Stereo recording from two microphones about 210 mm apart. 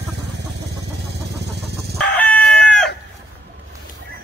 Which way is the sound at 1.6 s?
5° left (ahead or behind).